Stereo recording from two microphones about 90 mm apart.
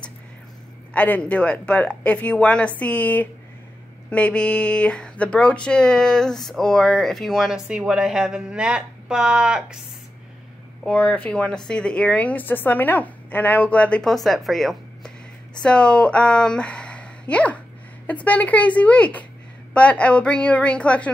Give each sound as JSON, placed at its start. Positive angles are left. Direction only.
{"t": 0.9, "sound": "a woman's voice", "side_deg": 15}
{"t": 10.9, "sound": "a woman's voice", "side_deg": 15}
{"t": 14.1, "sound": "a woman's voice", "side_deg": 0}